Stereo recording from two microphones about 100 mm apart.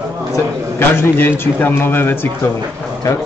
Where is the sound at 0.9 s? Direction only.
25° left (ahead or behind).